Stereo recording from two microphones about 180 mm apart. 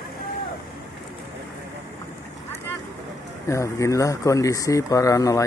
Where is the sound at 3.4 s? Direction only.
15° left (ahead or behind).